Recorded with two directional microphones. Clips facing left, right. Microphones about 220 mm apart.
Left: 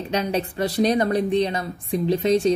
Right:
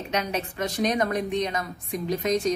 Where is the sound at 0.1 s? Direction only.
35° left (ahead or behind).